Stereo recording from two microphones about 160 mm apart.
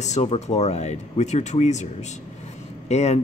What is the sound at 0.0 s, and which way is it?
Speech, 45° left (ahead or behind).